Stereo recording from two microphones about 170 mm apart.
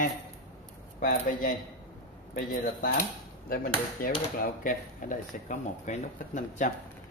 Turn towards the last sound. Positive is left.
turn(degrees=45)  # may be behind; listen again after turning